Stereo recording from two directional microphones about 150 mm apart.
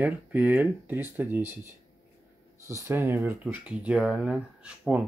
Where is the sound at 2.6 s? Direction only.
20° right (ahead or behind).